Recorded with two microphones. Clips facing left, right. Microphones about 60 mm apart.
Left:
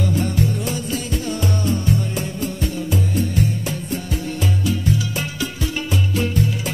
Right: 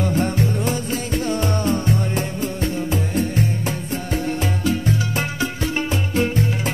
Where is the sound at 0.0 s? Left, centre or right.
Right.